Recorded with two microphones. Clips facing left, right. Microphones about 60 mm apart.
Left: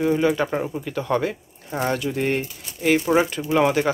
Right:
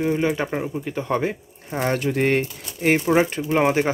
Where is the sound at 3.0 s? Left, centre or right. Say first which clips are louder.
Right 1 dB; right.